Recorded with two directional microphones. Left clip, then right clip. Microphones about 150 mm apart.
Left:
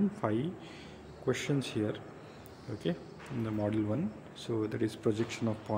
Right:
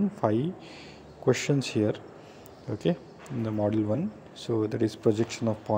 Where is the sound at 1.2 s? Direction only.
30° right (ahead or behind).